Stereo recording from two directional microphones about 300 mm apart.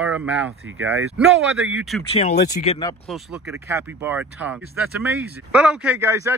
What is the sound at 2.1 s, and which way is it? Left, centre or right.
Speech, left.